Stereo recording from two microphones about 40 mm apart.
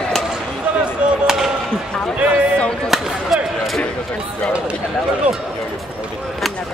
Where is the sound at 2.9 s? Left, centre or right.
Centre.